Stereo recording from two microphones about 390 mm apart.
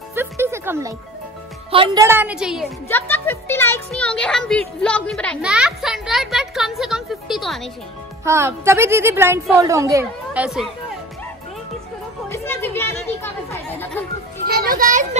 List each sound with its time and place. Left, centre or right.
0.1 s music: centre
1.7 s a woman's voice: centre
12.3 s chatter: centre
14.5 s children playing: right